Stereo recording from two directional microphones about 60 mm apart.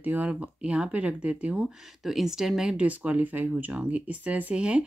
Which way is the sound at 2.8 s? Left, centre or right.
Right.